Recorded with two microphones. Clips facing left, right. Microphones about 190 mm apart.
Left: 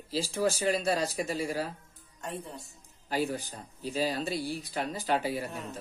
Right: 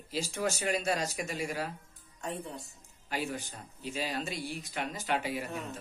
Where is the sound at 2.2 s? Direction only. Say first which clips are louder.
Right 1 dB; centre (ahead or behind).